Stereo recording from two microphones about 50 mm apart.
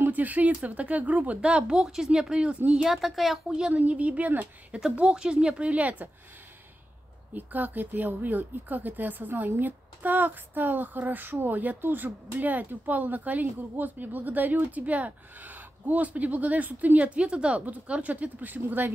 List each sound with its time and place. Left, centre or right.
0.0 s speech: right; by 2.5 s centre
2.8 s speech: centre
3.7 s speech: right
7.3 s speech: right